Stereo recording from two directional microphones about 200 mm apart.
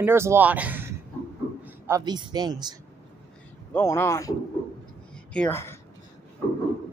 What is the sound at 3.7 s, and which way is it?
Speech, 10° left (ahead or behind).